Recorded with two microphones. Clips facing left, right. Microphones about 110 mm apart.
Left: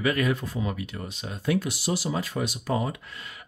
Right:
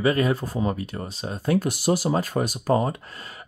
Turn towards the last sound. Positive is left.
turn(degrees=-40)  # may be behind; listen again after turning